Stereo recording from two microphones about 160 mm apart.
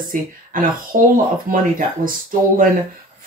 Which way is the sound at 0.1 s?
60° right (ahead or behind).